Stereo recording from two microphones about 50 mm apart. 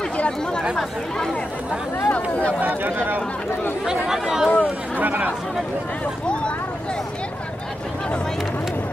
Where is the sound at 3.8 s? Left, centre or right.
Centre.